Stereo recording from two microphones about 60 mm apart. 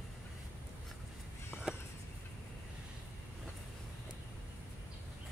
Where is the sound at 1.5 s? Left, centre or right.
Centre.